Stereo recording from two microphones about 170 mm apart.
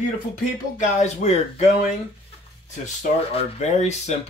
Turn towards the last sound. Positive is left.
turn(degrees=40)  # may be behind; listen again after turning